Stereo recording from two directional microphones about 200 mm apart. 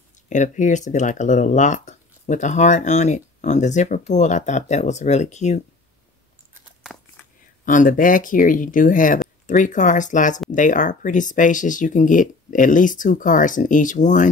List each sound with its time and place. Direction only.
0.3 s speech: 40° left (ahead or behind)
7.6 s speech: 40° left (ahead or behind)